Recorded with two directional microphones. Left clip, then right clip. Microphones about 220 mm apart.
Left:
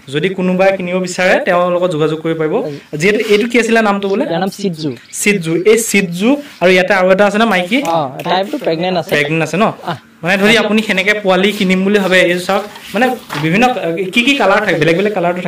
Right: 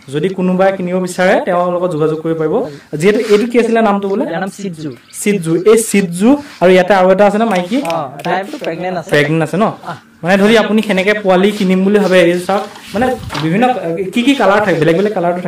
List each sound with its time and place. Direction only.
0.1 s a man's voice: 15° right (ahead or behind)
1.1 s a man's voice: 10° right (ahead or behind)
5.4 s a man's voice: 20° right (ahead or behind)
8.0 s speech: 50° left (ahead or behind)
9.1 s a man's voice: 20° right (ahead or behind)